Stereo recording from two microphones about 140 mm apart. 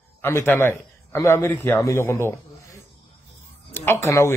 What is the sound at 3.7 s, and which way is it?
Speech, 15° left (ahead or behind).